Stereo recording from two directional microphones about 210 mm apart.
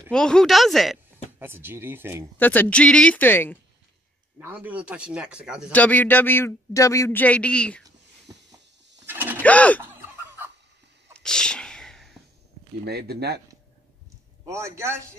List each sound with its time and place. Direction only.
0.1 s a man's voice: 5° left (ahead or behind)
1.4 s speech: 10° right (ahead or behind)
2.3 s speech: 10° left (ahead or behind)
4.4 s a man's voice: 10° right (ahead or behind)
5.7 s speech: 5° left (ahead or behind)
9.0 s a sound: 10° right (ahead or behind)
9.4 s bird: 5° left (ahead or behind)
9.8 s fowl: 10° right (ahead or behind)
11.1 s sneeze: 5° left (ahead or behind)
12.8 s speech: 50° right (ahead or behind)
14.5 s speech: 15° right (ahead or behind)